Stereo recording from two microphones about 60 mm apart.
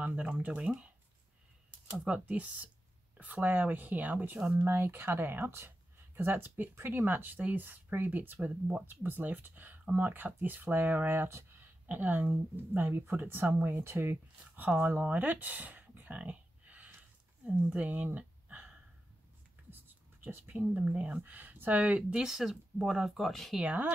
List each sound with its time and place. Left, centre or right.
0.0 s speech: right
1.9 s speech: centre
8.8 s speech: right
14.5 s speech: right
16.2 s a sound: right
17.6 s speech: right
20.2 s speech: right
20.5 s speech: right
22.2 s speech: centre
23.6 s speech: right